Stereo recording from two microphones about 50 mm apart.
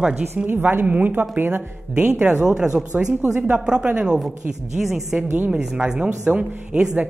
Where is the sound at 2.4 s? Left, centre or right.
Centre.